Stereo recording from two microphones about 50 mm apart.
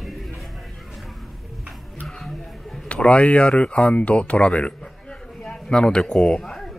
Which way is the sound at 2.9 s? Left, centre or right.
Left.